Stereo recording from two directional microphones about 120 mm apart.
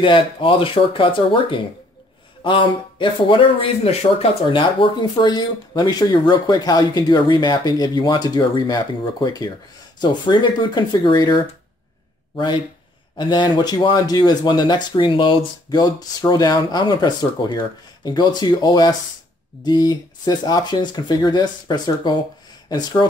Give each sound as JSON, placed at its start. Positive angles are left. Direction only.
{"t": 0.0, "sound": "speech", "side_deg": 45}
{"t": 13.2, "sound": "speech", "side_deg": 35}